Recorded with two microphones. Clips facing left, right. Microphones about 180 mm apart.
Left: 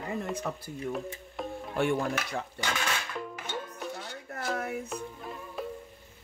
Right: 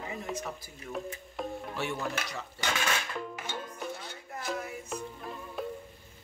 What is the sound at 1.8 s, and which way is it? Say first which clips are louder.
Speech: left 7 dB; 50° left (ahead or behind).